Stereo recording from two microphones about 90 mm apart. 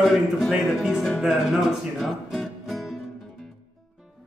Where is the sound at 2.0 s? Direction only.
5° left (ahead or behind).